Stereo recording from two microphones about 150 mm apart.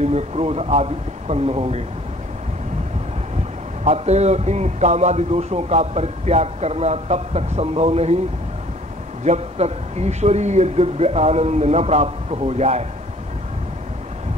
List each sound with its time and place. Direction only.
0.0 s a man's voice: 45° right (ahead or behind)
3.8 s a man's voice: 45° right (ahead or behind)
9.2 s a man's voice: 50° right (ahead or behind)